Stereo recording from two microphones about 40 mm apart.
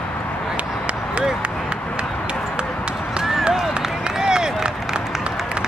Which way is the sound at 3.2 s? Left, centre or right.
Centre.